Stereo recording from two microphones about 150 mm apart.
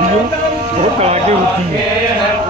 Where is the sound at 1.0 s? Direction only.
45° right (ahead or behind).